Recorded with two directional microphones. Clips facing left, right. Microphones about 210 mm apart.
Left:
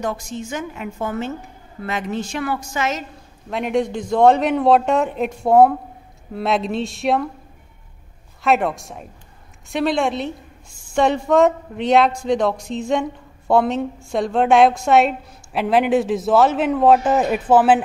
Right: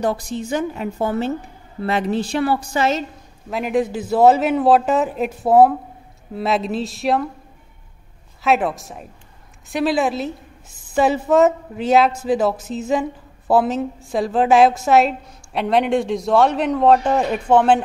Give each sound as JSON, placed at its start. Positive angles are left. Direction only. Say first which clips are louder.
{"t": 0.0, "sound": "a woman's voice", "louder": "right 4 dB", "side_deg": -35}
{"t": 3.4, "sound": "a woman's voice", "louder": "right 1 dB", "side_deg": 0}
{"t": 8.4, "sound": "a woman's voice", "louder": "even", "side_deg": 0}